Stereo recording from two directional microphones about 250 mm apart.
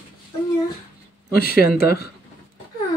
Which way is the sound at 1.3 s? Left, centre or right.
Left.